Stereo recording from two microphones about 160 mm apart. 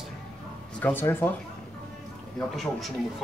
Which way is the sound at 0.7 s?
10° left (ahead or behind).